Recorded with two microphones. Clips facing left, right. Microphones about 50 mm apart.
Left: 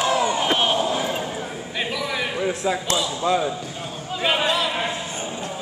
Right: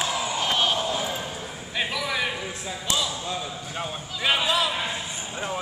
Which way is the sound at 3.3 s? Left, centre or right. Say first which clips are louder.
Left 11 dB; left.